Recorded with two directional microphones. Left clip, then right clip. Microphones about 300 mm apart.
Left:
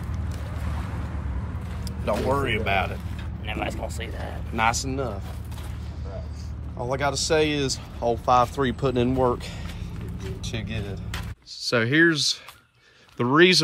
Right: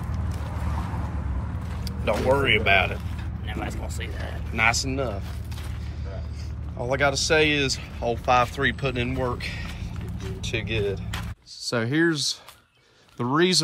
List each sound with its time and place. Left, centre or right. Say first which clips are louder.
1.9 s speech: right 2 dB; centre
3.4 s speech: left 4 dB; left
4.8 s speech: right 1 dB; centre
6.9 s speech: right 2 dB; centre